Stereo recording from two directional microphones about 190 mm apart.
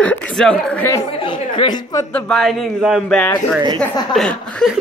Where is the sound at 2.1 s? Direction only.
5° left (ahead or behind).